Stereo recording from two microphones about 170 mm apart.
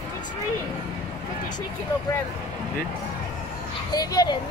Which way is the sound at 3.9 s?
25° left (ahead or behind).